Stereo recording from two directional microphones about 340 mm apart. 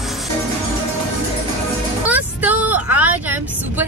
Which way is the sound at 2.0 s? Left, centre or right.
Centre.